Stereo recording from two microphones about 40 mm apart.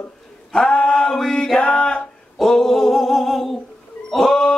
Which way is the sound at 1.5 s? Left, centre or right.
Left.